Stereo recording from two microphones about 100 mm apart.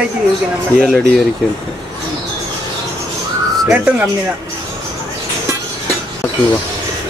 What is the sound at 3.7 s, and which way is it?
Speech, 15° right (ahead or behind).